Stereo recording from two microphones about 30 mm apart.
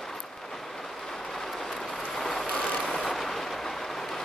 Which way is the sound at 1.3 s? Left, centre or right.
Centre.